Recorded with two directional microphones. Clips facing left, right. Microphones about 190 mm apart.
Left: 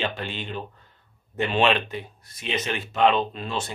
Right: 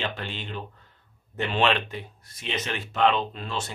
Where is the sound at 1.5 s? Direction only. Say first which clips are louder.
Left 2 dB; 15° left (ahead or behind).